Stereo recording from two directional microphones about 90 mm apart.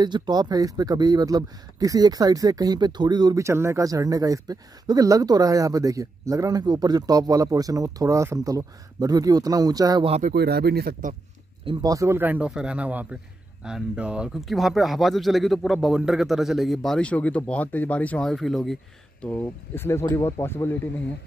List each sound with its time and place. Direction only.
0.0 s speech: 50° right (ahead or behind)
3.3 s speech: 30° right (ahead or behind)
6.6 s speech: 50° right (ahead or behind)
11.8 s speech: 40° right (ahead or behind)
12.2 s speech: 20° right (ahead or behind); by 18.3 s 15° left (ahead or behind)
18.3 s speech: centre (ahead or behind)
19.2 s speech: 20° left (ahead or behind)